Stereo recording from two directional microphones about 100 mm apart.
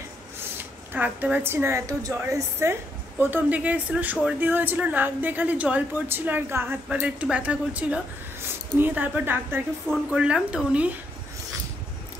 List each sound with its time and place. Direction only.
0.9 s a woman's voice: 15° right (ahead or behind)
10.0 s a woman's voice: 10° right (ahead or behind)